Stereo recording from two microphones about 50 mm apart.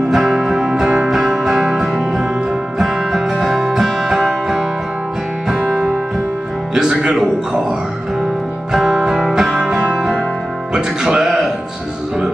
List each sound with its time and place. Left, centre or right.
0.1 s music: centre
6.7 s music: centre
8.7 s music: centre